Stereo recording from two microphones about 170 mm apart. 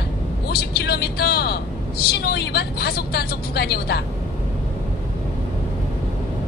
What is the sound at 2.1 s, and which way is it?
Speech, 70° left (ahead or behind).